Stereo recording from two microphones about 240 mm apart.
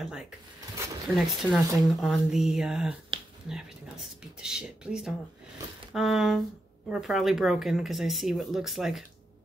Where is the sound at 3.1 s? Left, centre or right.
Right.